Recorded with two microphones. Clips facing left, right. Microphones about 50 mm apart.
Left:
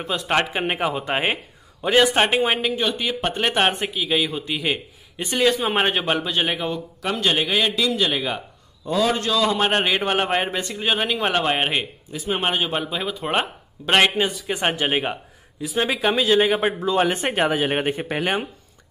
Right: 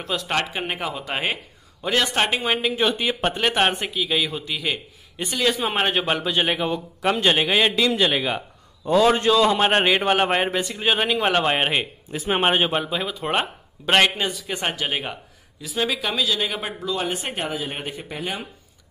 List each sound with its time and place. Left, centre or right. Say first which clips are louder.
0.0 s speech: left 2 dB; centre
0.4 s speech: left 4 dB; left
1.8 s speech: left 4 dB; centre
2.7 s a man's voice: right 1 dB; centre
3.3 s a man's voice: left 2 dB; centre
6.7 s a man's voice: right 3 dB; centre
9.6 s a man's voice: right 2 dB; centre
12.1 s a man's voice: right 3 dB; right
12.7 s a man's voice: right 1 dB; centre
14.6 s speech: left 5 dB; left
17.4 s speech: left 8 dB; left
18.0 s speech: left 7 dB; left